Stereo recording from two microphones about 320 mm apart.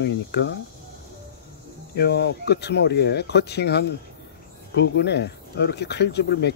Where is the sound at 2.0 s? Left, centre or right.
Left.